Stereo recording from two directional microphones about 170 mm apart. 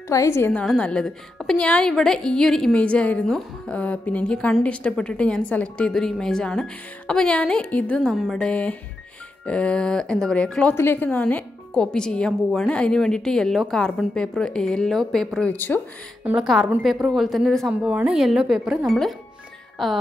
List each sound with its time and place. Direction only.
0.1 s a woman's voice: 15° left (ahead or behind)
0.5 s a woman's voice: 5° left (ahead or behind)
16.3 s a woman's voice: 5° right (ahead or behind)